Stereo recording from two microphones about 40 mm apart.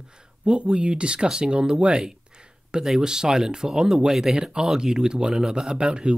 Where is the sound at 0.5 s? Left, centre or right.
Right.